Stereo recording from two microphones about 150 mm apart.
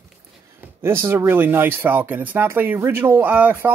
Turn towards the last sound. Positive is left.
turn(degrees=-10)  # may be behind; listen again after turning